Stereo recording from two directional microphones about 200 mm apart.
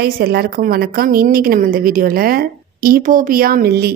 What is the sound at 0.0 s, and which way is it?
A woman's voice, 50° right (ahead or behind).